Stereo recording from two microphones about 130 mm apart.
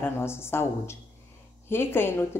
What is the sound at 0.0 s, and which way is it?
A woman's voice, 20° left (ahead or behind).